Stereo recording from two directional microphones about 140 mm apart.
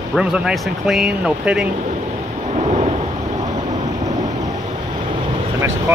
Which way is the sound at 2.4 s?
50° right (ahead or behind).